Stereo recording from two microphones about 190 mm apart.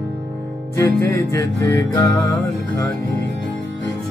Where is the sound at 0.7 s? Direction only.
15° left (ahead or behind).